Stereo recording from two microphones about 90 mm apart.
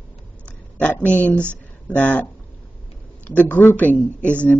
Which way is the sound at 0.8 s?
15° left (ahead or behind).